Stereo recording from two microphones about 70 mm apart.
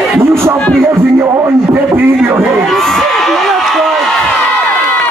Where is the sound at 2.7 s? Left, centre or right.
Centre.